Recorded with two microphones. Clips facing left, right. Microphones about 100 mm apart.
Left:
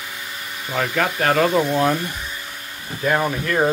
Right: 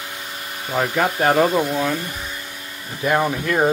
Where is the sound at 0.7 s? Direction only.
20° right (ahead or behind).